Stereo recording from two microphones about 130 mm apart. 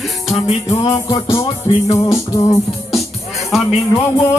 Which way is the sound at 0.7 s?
25° left (ahead or behind).